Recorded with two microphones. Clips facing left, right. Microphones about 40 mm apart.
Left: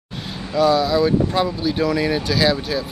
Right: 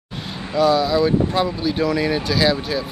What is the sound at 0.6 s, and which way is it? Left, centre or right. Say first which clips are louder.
Speech: even; centre.